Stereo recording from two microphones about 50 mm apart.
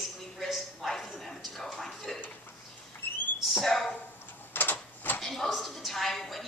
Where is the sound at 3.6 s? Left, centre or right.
Centre.